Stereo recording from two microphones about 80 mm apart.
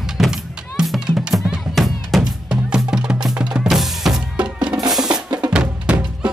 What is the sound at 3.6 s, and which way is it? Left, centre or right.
Drum, centre.